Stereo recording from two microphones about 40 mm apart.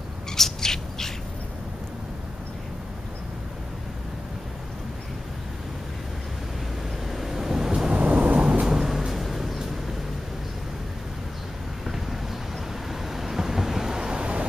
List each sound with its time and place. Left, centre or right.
0.3 s bird: centre
7.1 s a sound: centre
7.9 s thunder: right
8.6 s vehicle: centre
11.8 s vehicle: centre